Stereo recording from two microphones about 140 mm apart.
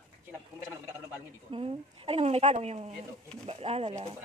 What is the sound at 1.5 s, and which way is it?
A woman's voice, 40° right (ahead or behind).